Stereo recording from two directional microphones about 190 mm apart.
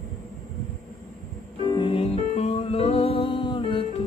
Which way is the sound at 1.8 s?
30° left (ahead or behind).